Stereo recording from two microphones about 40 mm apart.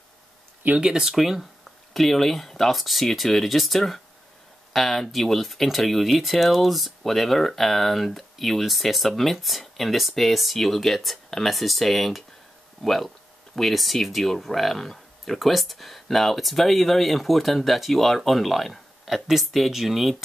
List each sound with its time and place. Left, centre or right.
0.7 s speech: right
1.0 s speech: centre